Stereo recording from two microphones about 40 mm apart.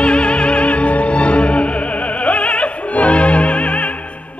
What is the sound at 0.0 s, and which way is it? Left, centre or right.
Opera, left.